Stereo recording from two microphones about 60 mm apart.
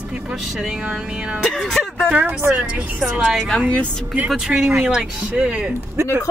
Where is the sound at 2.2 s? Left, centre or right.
Right.